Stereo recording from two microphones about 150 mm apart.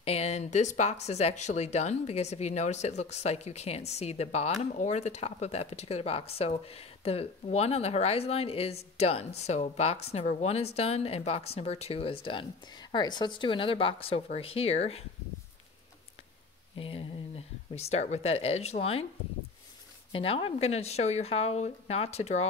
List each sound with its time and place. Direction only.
0.0 s speech: 45° left (ahead or behind)
16.7 s speech: 40° left (ahead or behind)
20.1 s speech: 40° left (ahead or behind)